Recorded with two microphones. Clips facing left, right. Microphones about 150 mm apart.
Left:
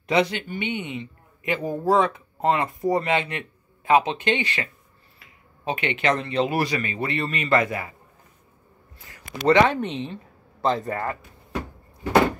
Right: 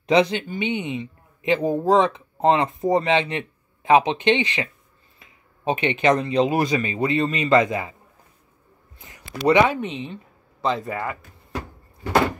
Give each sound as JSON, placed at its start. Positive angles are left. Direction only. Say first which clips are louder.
{"t": 0.0, "sound": "speech", "louder": "right 4 dB", "side_deg": -20}
{"t": 8.9, "sound": "a sound", "louder": "right 1 dB", "side_deg": -20}
{"t": 9.4, "sound": "speech", "louder": "right 1 dB", "side_deg": -10}